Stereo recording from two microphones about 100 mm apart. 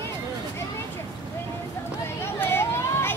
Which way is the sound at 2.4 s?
25° left (ahead or behind).